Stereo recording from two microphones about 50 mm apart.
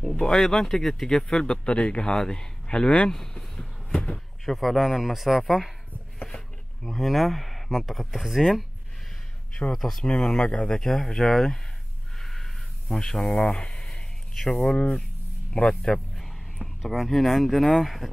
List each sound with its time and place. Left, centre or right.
0.0 s speech: centre
3.9 s a sound: left
4.5 s speech: centre
6.8 s speech: centre
9.7 s speech: centre
10.0 s speech: centre
12.2 s a sound: centre
13.3 s a sound: left
14.4 s speech: centre
16.8 s speech: centre